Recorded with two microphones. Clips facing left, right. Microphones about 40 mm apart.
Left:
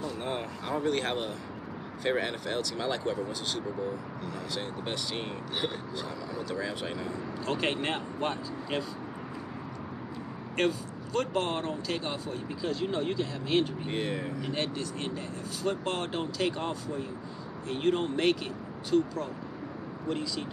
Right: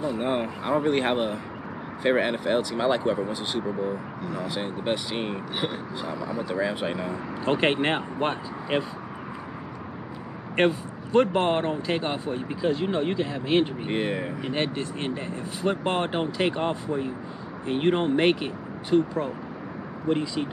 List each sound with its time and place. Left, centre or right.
0.0 s speech: right
4.2 s speech: centre
4.5 s speech: right
10.5 s speech: right